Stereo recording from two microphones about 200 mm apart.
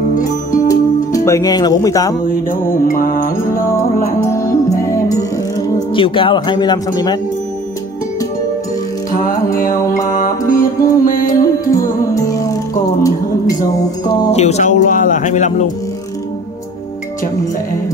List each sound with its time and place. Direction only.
0.1 s music: 40° left (ahead or behind)
0.7 s music: 15° left (ahead or behind)
2.9 s music: 45° left (ahead or behind)
4.2 s music: 15° left (ahead or behind)
5.8 s speech: 25° left (ahead or behind)
9.1 s music: 45° left (ahead or behind)
9.6 s mantra: 15° left (ahead or behind)
10.6 s music: 45° left (ahead or behind)
12.1 s music: 15° left (ahead or behind)
14.3 s speech: 35° left (ahead or behind)